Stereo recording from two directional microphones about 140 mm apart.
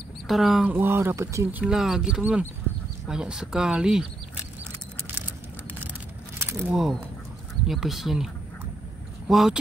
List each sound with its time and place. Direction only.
0.3 s speech: centre (ahead or behind)
0.7 s speech: 15° right (ahead or behind)
1.6 s speech: 5° right (ahead or behind)
6.7 s speech: 5° right (ahead or behind)
9.3 s speech: 5° right (ahead or behind)